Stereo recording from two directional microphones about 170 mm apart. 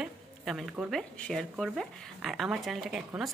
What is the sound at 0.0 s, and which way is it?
Speech, centre (ahead or behind).